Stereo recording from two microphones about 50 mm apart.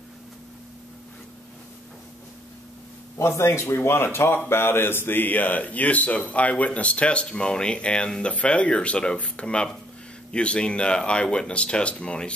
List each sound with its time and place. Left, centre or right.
3.2 s speech: left